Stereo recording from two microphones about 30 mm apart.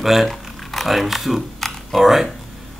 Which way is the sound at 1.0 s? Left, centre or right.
Centre.